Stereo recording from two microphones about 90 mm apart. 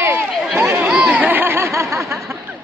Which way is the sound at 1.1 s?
20° right (ahead or behind).